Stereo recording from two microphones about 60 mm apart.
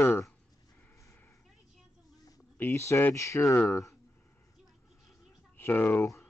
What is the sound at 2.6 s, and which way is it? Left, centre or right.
Speech, left.